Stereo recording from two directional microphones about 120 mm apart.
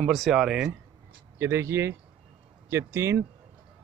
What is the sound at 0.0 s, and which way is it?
Speech, centre (ahead or behind).